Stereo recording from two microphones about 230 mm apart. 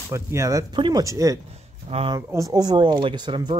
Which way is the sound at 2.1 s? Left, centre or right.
Centre.